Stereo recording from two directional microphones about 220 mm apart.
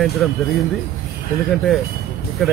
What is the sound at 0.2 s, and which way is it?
Speech, 5° left (ahead or behind).